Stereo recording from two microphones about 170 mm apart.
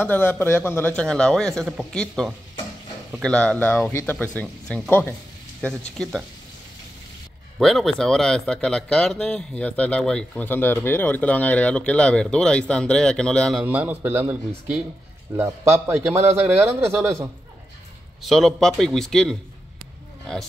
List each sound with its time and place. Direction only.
0.0 s a man's voice: 10° left (ahead or behind)
7.5 s speech: centre (ahead or behind)
13.7 s speech: 10° right (ahead or behind)
18.2 s a man's voice: centre (ahead or behind)